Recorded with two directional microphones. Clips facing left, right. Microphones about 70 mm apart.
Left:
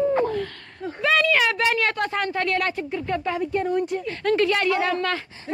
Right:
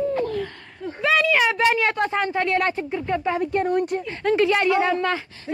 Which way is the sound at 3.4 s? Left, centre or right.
Right.